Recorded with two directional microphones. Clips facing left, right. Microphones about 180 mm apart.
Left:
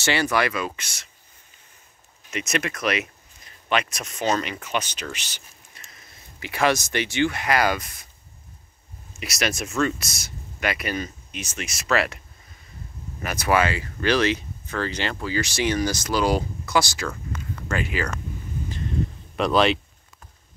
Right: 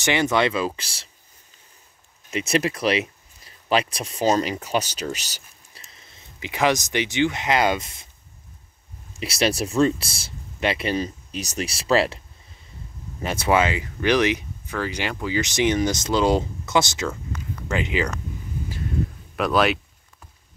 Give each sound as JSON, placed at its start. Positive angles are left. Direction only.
{"t": 0.0, "sound": "speech", "side_deg": -20}
{"t": 2.3, "sound": "speech", "side_deg": -30}
{"t": 5.9, "sound": "speech", "side_deg": -20}
{"t": 9.1, "sound": "speech", "side_deg": -30}
{"t": 13.2, "sound": "speech", "side_deg": -25}
{"t": 19.3, "sound": "speech", "side_deg": 0}